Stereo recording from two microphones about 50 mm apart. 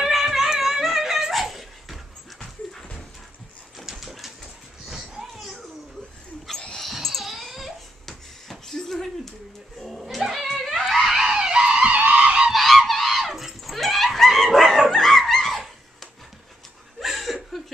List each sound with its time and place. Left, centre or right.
0.0 s music: centre
2.4 s dog: centre
3.8 s a sound: centre
6.8 s dog: centre
7.2 s a sound: centre
10.1 s music: centre
10.8 s screaming: centre; by 12.4 s right
12.5 s dog: centre
17.0 s chuckle: centre